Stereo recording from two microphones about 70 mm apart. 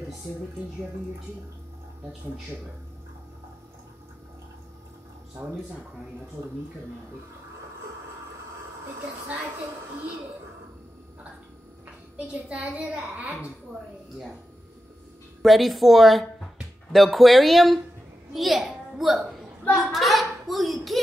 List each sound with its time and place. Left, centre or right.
12.3 s child singing: centre
13.1 s a woman's voice: right
15.4 s a child's voice: centre